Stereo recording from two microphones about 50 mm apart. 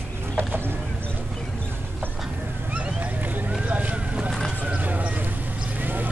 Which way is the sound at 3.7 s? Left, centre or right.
Right.